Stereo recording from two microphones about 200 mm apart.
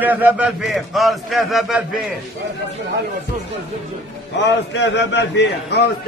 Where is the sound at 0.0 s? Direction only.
10° right (ahead or behind).